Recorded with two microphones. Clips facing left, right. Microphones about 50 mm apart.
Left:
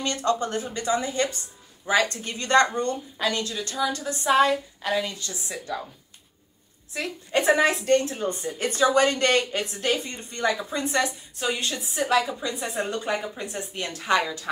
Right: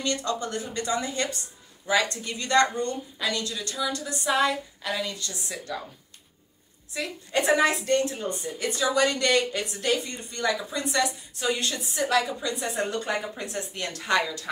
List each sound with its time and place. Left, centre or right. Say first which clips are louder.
0.0 s a woman's voice: left 3 dB; left
2.2 s a woman's voice: left 2 dB; left
7.3 s a woman's voice: left 2 dB; left
8.2 s a woman's voice: left 3 dB; left
11.3 s a woman's voice: even; centre